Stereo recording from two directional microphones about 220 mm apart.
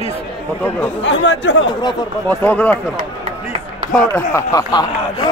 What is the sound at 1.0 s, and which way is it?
Speech, 55° left (ahead or behind).